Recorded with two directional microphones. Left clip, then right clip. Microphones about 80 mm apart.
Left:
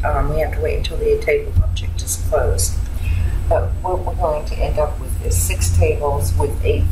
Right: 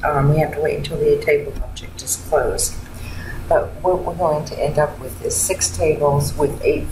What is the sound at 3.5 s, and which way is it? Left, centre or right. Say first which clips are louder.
Speech: right 3 dB; centre.